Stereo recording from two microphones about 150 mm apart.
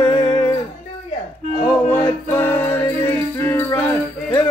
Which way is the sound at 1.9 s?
10° left (ahead or behind).